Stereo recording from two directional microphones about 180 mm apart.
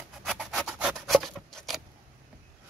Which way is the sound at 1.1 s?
Centre (ahead or behind).